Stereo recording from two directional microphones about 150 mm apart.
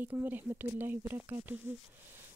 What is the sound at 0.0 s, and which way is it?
A woman's voice, 10° right (ahead or behind).